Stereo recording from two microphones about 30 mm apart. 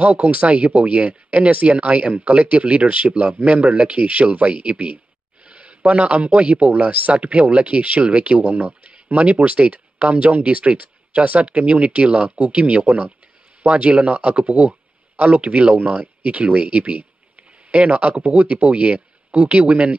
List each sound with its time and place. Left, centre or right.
0.0 s speech: right
5.4 s a sound: right
5.9 s a man's voice: right
6.7 s speech: right
8.5 s speech: right
9.1 s speech: right
13.7 s speech: right